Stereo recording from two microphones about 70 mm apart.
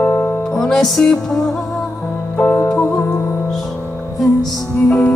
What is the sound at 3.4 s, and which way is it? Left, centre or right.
Music, centre.